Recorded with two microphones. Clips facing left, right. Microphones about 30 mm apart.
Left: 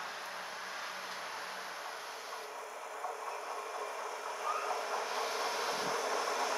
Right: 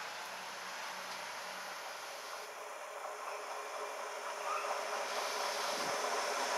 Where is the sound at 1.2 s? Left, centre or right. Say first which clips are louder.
Left 2 dB; centre.